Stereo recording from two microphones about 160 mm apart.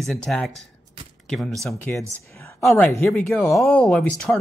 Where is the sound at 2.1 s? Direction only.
15° left (ahead or behind).